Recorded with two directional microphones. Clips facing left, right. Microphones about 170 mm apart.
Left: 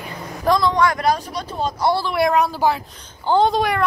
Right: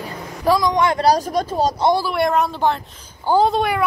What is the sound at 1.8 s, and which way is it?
Speech, 20° right (ahead or behind).